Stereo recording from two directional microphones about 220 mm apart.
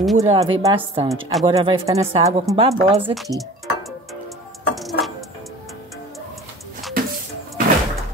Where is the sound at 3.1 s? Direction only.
Centre (ahead or behind).